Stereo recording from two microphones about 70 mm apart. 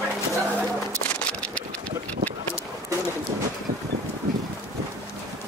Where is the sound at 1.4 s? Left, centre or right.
Centre.